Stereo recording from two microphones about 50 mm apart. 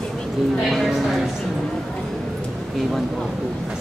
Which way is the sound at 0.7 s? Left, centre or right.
Centre.